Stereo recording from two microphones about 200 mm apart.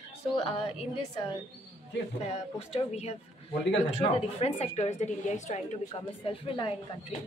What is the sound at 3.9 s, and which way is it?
A woman's voice, 30° left (ahead or behind).